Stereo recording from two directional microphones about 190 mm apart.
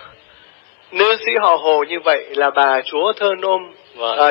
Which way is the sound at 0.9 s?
55° left (ahead or behind).